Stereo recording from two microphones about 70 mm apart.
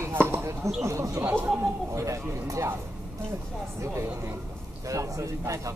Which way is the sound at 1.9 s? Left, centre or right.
Right.